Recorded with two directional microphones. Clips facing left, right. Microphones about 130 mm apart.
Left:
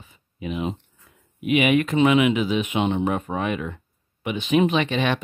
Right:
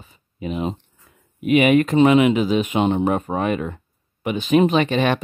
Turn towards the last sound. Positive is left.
turn(degrees=-45)  # may be behind; listen again after turning